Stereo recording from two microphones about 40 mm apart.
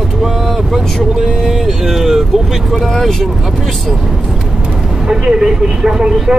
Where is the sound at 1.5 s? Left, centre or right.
Centre.